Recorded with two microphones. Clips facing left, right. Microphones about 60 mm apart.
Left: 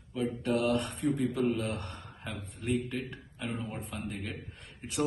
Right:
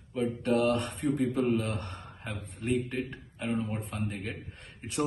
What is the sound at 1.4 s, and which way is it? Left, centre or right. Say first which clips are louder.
Speech: right 2 dB; right.